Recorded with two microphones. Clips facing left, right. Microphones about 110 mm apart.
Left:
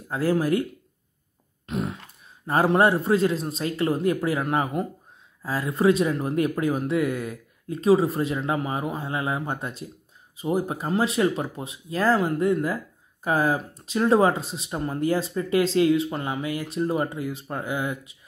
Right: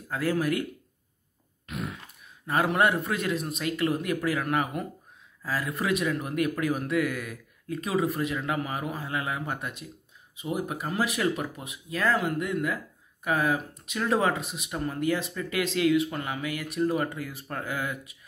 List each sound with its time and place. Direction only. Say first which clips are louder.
0.1 s speech: left 4 dB; 30° left (ahead or behind)
1.7 s a sound: left 6 dB; 30° left (ahead or behind)
2.4 s speech: left 4 dB; 30° left (ahead or behind)